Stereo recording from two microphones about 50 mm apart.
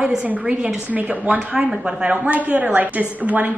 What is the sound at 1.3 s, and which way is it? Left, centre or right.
Speech, right.